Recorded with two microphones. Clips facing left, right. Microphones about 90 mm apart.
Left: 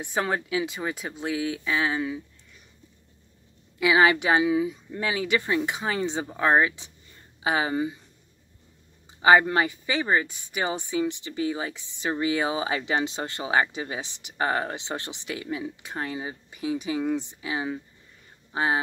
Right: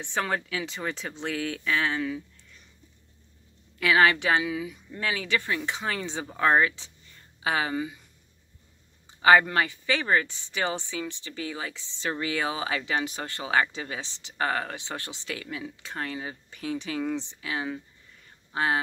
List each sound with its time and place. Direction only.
0.0 s speech: 15° left (ahead or behind)
3.8 s speech: 15° left (ahead or behind)
9.2 s speech: 20° left (ahead or behind)